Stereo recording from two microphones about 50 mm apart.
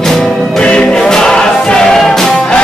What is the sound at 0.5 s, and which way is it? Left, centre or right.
Music, centre.